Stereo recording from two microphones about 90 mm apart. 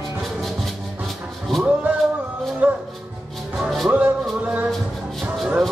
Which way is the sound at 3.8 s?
15° right (ahead or behind).